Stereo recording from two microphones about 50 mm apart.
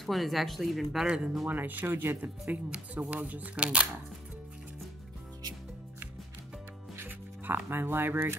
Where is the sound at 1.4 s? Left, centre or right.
Right.